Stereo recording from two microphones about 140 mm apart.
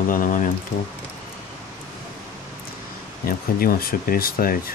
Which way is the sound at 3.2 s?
90° left.